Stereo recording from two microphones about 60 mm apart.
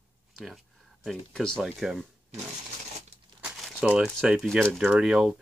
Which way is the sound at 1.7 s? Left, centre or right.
Centre.